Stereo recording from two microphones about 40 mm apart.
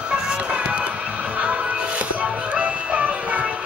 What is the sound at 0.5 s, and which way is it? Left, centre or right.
Music, right.